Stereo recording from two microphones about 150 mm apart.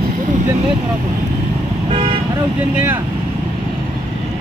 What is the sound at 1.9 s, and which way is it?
Speech, 40° right (ahead or behind).